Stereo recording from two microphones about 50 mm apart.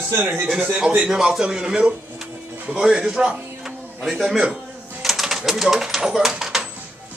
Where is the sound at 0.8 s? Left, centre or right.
Centre.